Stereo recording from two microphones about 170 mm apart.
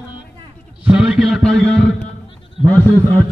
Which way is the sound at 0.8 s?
5° right (ahead or behind).